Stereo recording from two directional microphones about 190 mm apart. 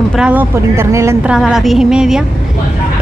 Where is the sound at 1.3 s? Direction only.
Centre (ahead or behind).